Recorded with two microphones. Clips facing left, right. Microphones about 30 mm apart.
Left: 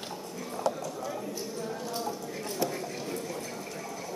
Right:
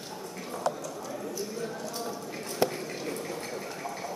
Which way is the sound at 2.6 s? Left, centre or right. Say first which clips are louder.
Right 4 dB; right.